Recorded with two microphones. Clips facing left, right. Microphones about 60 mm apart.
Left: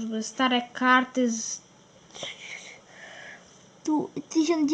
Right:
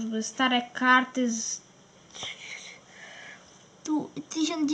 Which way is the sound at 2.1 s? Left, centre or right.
Left.